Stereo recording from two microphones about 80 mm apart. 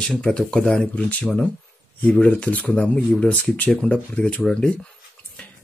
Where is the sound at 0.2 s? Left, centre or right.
Centre.